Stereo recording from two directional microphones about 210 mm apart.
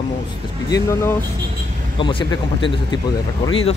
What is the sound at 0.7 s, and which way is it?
Speech, 15° left (ahead or behind).